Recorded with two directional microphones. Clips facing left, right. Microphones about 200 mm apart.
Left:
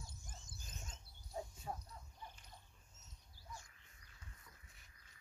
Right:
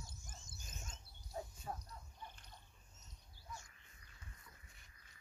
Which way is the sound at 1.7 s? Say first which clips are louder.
Even; 5° left (ahead or behind).